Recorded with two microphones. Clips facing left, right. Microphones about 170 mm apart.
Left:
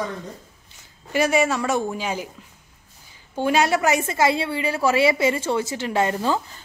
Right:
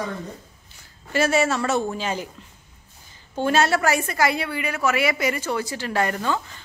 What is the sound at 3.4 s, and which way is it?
A woman's voice, 10° left (ahead or behind).